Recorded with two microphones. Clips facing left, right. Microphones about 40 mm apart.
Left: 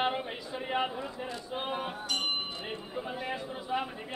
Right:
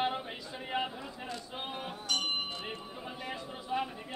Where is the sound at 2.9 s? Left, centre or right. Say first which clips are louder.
Left 5 dB; centre.